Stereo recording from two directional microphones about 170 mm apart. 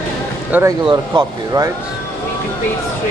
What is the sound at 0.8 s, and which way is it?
Speech, 25° right (ahead or behind).